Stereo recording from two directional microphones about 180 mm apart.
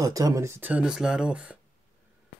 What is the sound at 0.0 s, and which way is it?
Speech, 20° right (ahead or behind).